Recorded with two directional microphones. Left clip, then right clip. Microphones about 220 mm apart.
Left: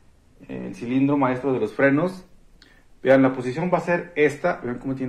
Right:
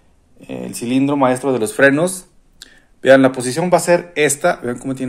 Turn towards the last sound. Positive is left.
turn(degrees=-40)  # may be behind; listen again after turning